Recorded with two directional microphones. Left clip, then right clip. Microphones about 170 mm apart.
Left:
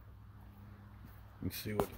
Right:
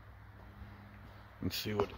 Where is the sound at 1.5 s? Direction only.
20° right (ahead or behind).